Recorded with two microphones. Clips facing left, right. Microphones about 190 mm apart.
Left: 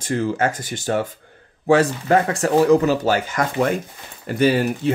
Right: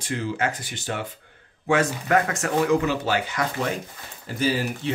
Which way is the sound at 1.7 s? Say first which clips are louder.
Left 5 dB; 35° left (ahead or behind).